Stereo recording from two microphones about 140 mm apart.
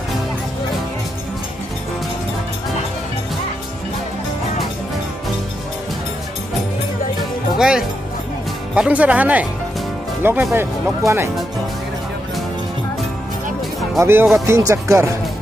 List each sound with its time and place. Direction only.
7.5 s speech: 5° right (ahead or behind)
10.5 s speech: 15° right (ahead or behind)
13.9 s speech: 15° right (ahead or behind)